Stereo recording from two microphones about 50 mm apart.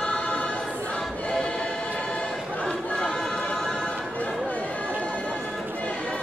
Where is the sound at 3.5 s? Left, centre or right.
Centre.